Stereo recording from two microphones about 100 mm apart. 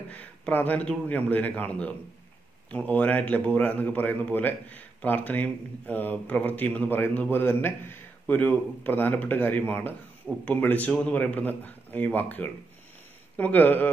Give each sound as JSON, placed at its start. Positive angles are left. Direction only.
{"t": 0.1, "sound": "speech", "side_deg": 15}